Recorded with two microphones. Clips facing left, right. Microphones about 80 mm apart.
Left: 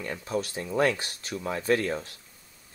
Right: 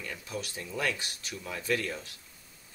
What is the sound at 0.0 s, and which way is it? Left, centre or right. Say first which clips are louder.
Speech: left 8 dB; left.